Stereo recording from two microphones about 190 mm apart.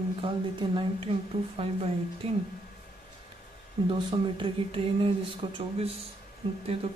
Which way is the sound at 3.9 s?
25° right (ahead or behind).